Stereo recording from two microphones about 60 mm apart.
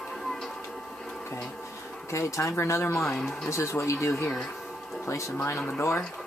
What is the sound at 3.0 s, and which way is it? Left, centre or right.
Speech, centre.